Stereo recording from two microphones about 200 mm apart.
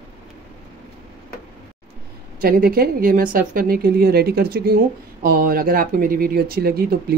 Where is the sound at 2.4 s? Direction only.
45° right (ahead or behind).